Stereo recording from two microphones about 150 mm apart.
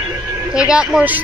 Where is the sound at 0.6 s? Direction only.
5° right (ahead or behind).